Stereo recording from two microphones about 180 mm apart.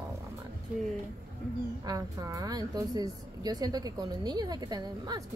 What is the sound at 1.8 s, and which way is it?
Speech, 20° right (ahead or behind).